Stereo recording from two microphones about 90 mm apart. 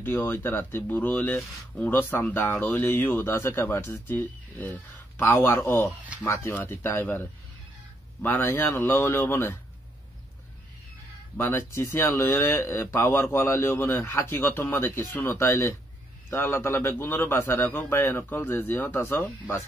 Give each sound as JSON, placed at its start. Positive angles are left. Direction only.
{"t": 0.0, "sound": "speech", "side_deg": 25}
{"t": 11.3, "sound": "speech", "side_deg": 25}